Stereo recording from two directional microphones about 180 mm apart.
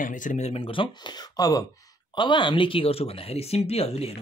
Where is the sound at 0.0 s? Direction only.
45° left (ahead or behind).